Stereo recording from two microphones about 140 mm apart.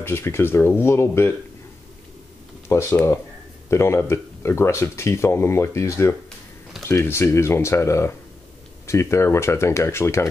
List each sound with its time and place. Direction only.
0.0 s speech: 15° left (ahead or behind)
2.7 s speech: 20° left (ahead or behind)